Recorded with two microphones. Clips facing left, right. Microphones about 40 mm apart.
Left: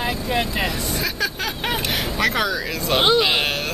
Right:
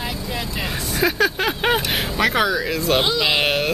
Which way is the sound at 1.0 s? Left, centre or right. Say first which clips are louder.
Right 10 dB; right.